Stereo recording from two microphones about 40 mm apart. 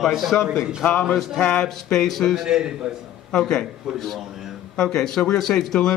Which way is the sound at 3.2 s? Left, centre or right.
Centre.